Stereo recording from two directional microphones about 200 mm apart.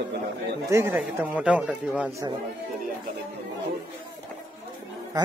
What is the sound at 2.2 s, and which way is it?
Speech, 15° right (ahead or behind).